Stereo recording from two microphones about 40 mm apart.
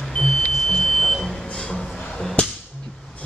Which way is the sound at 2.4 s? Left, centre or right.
Left.